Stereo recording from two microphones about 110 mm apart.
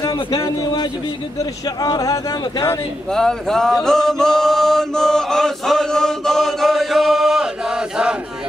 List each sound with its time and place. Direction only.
0.0 s speech: 35° left (ahead or behind)
3.1 s male singing: 5° left (ahead or behind)